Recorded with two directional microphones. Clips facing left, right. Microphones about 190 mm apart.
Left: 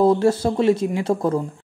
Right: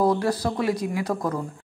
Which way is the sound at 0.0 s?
25° left (ahead or behind).